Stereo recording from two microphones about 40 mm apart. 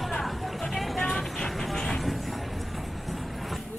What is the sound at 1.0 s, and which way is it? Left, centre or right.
Vehicle, centre.